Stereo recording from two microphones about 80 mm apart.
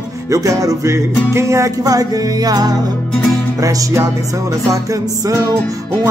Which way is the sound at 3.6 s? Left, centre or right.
Right.